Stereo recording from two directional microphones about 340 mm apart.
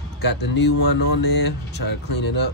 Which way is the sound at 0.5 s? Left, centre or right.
Left.